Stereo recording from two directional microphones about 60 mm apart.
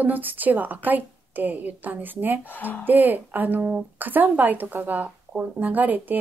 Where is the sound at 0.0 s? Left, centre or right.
Right.